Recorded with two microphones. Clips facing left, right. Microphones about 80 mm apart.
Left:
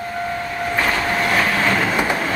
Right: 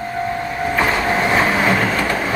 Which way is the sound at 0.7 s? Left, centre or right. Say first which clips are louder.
Right 2 dB; right.